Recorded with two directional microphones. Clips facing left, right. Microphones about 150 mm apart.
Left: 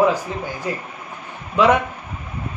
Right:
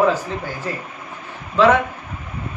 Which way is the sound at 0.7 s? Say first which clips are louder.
Left 2 dB; 15° left (ahead or behind).